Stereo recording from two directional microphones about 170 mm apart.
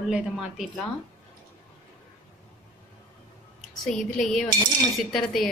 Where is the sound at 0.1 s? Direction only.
5° right (ahead or behind).